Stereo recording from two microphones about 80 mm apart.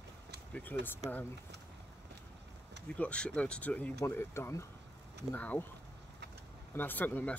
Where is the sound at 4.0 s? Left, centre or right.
Left.